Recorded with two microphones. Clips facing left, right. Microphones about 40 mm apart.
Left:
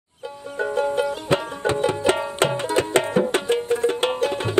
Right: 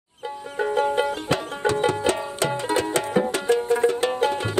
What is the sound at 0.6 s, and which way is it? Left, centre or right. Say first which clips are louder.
Music: even; right.